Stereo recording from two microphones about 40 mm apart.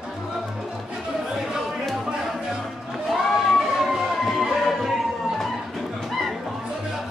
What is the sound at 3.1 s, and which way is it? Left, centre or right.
Music, centre.